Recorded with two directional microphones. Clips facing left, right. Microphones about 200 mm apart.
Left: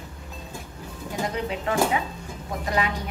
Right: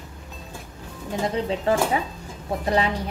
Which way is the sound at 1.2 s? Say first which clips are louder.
Right 5 dB; 30° right (ahead or behind).